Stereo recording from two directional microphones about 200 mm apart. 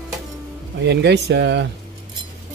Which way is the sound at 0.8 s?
60° right (ahead or behind).